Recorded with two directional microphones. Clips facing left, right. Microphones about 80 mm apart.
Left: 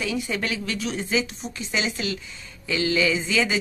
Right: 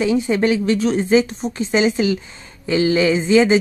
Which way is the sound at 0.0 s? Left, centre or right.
Right.